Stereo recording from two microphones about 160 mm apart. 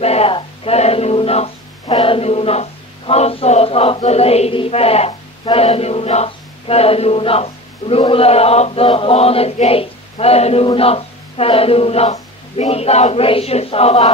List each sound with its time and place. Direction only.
0.0 s speech: 40° left (ahead or behind)